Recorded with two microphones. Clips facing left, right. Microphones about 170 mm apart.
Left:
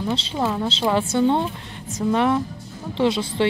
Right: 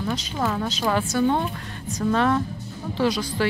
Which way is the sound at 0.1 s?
30° left (ahead or behind).